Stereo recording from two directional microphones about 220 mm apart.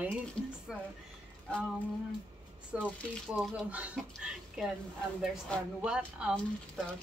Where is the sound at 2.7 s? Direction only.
5° right (ahead or behind).